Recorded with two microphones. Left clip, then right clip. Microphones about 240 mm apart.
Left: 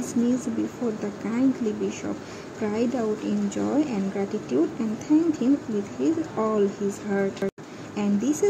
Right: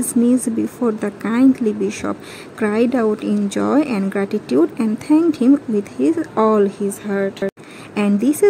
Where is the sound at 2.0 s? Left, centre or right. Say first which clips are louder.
Right 7 dB; right.